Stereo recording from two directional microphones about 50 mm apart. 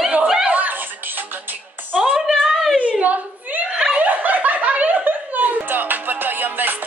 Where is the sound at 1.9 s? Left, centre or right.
Centre.